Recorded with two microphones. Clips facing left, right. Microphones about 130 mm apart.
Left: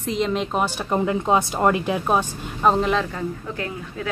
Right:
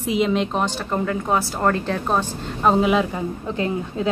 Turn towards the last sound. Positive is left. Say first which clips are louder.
# right 6 dB
turn(degrees=-20)  # may be behind; listen again after turning